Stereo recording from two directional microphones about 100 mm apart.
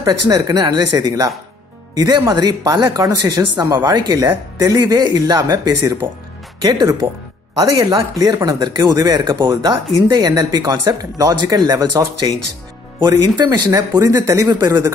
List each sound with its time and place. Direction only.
0.0 s speech: 40° right (ahead or behind)
13.7 s speech: 30° right (ahead or behind)